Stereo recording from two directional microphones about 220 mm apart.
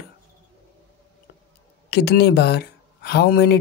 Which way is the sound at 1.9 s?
45° left (ahead or behind).